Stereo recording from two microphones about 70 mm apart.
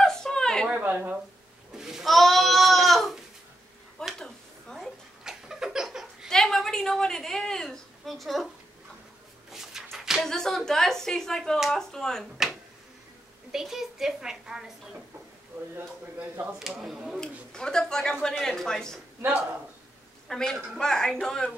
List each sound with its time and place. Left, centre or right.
0.0 s a sound: centre
0.7 s a woman's voice: right
1.7 s goat: centre
4.0 s a sound: centre
4.7 s a sound: centre
6.2 s a woman's voice: centre
9.5 s a sound: centre
10.2 s speech: centre
13.5 s a woman's voice: centre
16.5 s a woman's voice: centre
17.2 s speech: centre
20.2 s a woman's voice: centre